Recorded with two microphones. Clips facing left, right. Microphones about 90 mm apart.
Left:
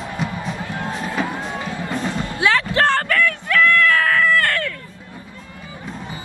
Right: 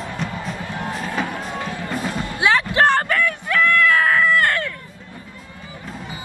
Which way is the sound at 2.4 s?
20° right (ahead or behind).